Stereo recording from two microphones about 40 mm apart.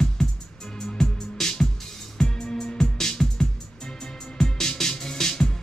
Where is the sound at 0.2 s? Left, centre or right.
Centre.